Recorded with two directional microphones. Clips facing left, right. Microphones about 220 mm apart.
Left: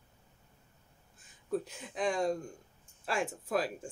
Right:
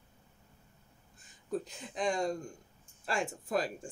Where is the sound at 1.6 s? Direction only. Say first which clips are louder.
Even; 5° left (ahead or behind).